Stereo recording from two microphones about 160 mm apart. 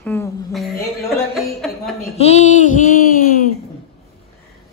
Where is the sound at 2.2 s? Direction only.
45° left (ahead or behind); by 3.5 s 60° left (ahead or behind).